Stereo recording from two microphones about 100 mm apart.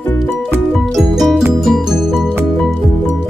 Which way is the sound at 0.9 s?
Centre (ahead or behind).